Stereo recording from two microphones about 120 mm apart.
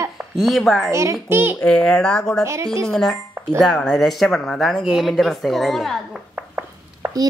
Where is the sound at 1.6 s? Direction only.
5° left (ahead or behind).